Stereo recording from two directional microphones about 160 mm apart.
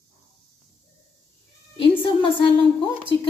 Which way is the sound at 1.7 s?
30° left (ahead or behind).